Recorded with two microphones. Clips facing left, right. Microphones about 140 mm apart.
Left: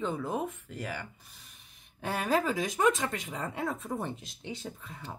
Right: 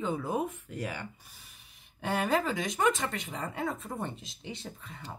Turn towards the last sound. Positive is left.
turn(degrees=5)  # may be behind; listen again after turning